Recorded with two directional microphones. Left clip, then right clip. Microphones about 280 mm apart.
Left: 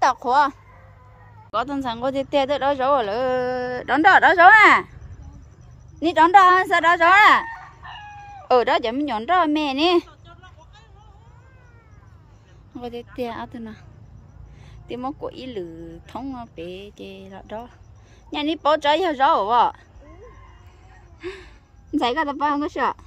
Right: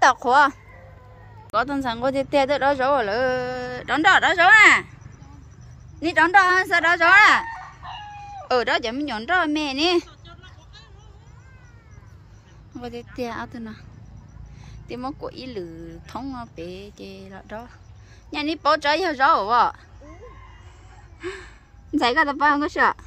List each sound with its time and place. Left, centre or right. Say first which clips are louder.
0.0 s a child's voice: right 2 dB; centre
5.9 s a woman's voice: left 3 dB; centre
7.5 s chicken: right 2 dB; right
8.5 s a woman's voice: left 3 dB; centre
12.7 s a woman's voice: left 2 dB; centre
21.2 s gasp: right 1 dB; centre
21.9 s a woman's voice: right 2 dB; centre